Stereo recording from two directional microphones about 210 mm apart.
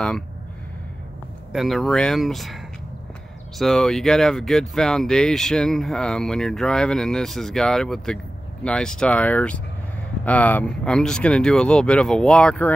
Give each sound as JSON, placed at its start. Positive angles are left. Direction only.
{"t": 1.5, "sound": "speech", "side_deg": 0}